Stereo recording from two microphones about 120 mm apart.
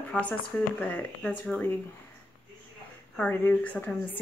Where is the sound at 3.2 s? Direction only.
15° left (ahead or behind).